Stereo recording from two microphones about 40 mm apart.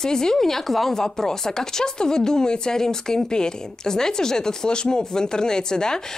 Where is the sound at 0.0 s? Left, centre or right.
Centre.